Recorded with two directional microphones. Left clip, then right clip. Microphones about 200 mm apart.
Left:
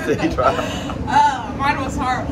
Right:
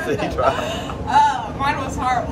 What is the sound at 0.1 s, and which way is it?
Speech, 10° right (ahead or behind).